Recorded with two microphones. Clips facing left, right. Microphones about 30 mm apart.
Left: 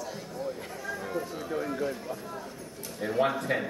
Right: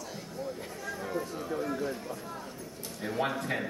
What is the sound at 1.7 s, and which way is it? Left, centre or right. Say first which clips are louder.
A man's voice: left 2 dB; centre.